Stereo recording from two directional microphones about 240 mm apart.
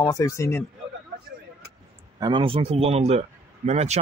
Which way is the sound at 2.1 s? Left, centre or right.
Centre.